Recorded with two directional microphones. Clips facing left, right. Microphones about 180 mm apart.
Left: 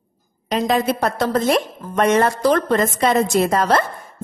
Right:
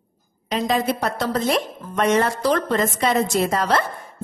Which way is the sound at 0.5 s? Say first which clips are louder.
Left 3 dB; 50° left (ahead or behind).